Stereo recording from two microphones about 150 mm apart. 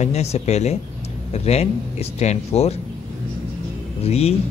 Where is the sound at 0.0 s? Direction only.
45° left (ahead or behind).